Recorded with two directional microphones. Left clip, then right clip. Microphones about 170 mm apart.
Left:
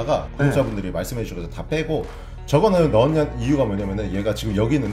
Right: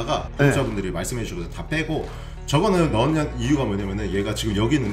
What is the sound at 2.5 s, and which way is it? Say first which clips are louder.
Speech: left 4 dB; 45° left (ahead or behind).